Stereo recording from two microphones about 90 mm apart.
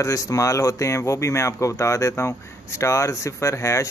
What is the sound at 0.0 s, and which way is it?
Speech, 35° left (ahead or behind).